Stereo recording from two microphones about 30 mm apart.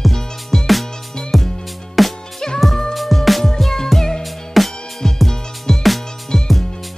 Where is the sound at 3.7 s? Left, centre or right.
Centre.